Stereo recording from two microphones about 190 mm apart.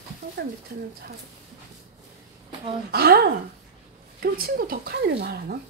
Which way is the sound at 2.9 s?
55° right (ahead or behind).